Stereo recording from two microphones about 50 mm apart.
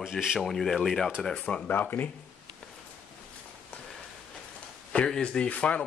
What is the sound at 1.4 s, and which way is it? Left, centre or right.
Speech, left.